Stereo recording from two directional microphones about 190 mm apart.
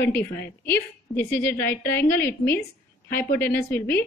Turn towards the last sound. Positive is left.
turn(degrees=10)  # may be behind; listen again after turning